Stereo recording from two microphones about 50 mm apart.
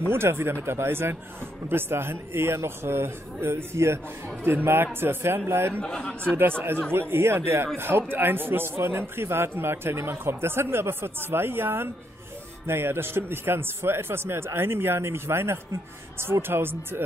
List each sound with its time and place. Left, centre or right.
0.1 s speech: right
5.0 s speech: right
5.8 s a man's voice: centre
6.2 s speech: right